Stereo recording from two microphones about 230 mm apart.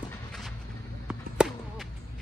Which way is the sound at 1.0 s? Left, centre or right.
Centre.